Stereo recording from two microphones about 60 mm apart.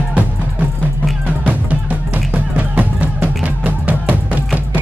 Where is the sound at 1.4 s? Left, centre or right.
Right.